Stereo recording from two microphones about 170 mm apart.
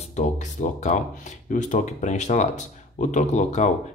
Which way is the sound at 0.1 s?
45° left (ahead or behind).